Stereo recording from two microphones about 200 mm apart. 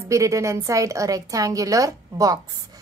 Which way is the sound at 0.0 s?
15° right (ahead or behind).